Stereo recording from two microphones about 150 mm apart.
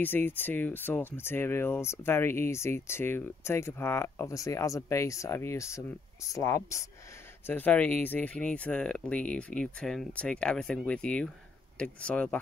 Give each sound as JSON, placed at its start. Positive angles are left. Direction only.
{"t": 0.0, "sound": "speech", "side_deg": 15}